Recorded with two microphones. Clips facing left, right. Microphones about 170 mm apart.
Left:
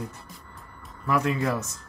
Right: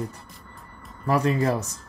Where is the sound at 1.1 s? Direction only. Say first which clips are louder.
Right 3 dB; 35° right (ahead or behind).